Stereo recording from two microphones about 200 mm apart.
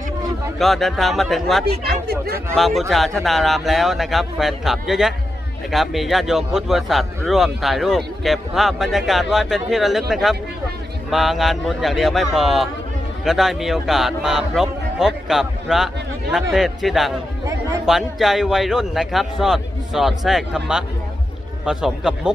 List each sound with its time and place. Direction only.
0.6 s a man's voice: centre (ahead or behind)
1.7 s speech: 50° right (ahead or behind)
2.5 s a man's voice: centre (ahead or behind)